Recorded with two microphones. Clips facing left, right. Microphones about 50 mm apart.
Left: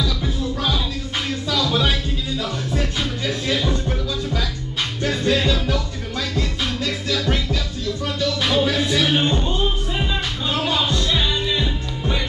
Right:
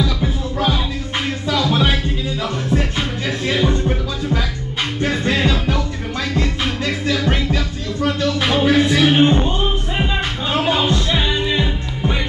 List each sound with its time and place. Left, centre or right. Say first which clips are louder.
0.0 s music: right 3 dB; right
10.5 s music: right 4 dB; right